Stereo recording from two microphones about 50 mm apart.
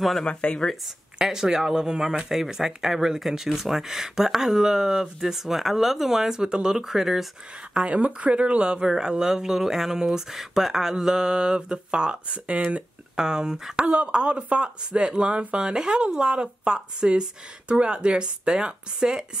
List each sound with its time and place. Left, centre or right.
0.2 s speech: left
1.2 s speech: centre
7.7 s speech: right